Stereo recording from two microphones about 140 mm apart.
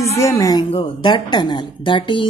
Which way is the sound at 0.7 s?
35° left (ahead or behind).